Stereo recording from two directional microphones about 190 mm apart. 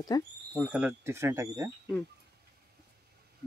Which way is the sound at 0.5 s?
5° right (ahead or behind).